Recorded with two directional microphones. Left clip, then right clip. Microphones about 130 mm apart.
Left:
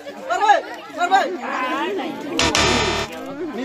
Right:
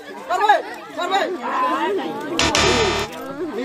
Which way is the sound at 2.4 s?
Centre (ahead or behind).